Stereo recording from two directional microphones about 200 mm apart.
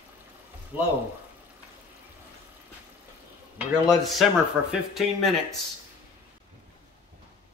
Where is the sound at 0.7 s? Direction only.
5° right (ahead or behind).